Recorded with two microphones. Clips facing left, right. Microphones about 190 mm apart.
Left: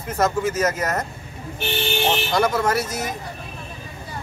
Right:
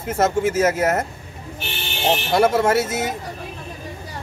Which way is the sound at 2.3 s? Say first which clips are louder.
Right 6 dB; 25° right (ahead or behind).